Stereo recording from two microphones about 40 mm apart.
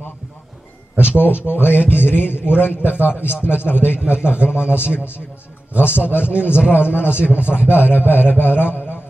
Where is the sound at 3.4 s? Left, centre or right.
Left.